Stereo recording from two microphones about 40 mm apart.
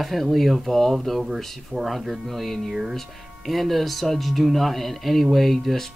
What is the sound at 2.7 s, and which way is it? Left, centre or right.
Speech, centre.